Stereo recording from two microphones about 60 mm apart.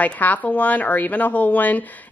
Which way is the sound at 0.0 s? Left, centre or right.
Left.